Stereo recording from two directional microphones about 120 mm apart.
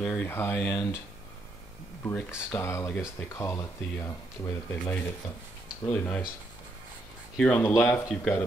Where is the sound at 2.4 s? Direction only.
20° left (ahead or behind).